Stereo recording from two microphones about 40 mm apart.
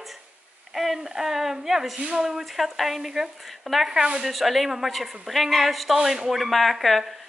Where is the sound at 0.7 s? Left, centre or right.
Centre.